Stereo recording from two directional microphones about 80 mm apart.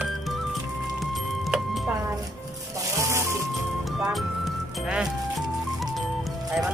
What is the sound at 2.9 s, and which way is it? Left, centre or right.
Music, right.